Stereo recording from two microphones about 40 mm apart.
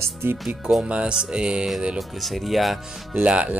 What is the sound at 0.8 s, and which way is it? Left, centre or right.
Music, right.